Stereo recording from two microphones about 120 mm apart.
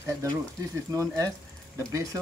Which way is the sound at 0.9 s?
25° right (ahead or behind).